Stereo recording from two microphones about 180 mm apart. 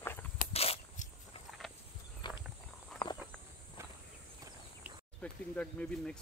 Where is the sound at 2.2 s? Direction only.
25° left (ahead or behind).